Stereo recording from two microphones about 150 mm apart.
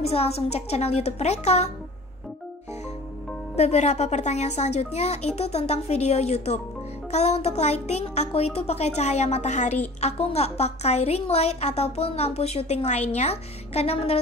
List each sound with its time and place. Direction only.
0.0 s a woman's voice: 40° left (ahead or behind)
3.5 s a woman's voice: 45° left (ahead or behind)